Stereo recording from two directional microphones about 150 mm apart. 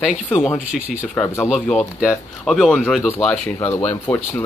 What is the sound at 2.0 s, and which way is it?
Speech, centre (ahead or behind).